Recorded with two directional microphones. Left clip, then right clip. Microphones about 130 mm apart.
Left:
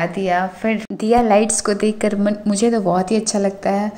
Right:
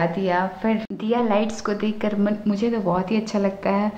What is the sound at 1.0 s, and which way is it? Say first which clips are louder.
A woman's voice: left 9 dB; 35° left (ahead or behind).